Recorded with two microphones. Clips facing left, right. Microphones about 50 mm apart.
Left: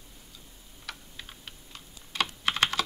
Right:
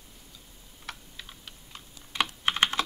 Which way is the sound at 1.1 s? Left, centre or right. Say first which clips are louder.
Left 1 dB; centre.